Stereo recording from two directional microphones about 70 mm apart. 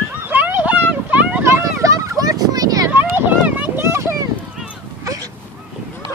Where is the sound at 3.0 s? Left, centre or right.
Right.